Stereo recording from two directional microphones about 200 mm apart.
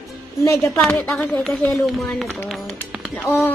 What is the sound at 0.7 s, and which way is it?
A woman's voice, 5° left (ahead or behind).